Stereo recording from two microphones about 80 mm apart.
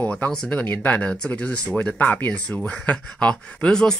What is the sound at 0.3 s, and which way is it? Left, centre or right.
Speech, centre.